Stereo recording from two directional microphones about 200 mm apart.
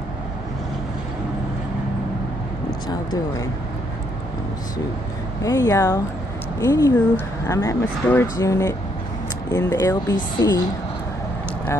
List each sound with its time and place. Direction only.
2.9 s speech: 20° left (ahead or behind)
5.4 s speech: 15° left (ahead or behind)